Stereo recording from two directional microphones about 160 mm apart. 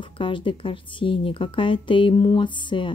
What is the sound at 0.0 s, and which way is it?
Speech, 30° left (ahead or behind).